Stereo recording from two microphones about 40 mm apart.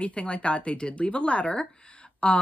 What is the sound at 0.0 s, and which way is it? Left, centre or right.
A woman's voice, left.